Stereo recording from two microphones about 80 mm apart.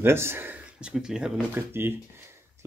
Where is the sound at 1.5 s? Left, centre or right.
Right.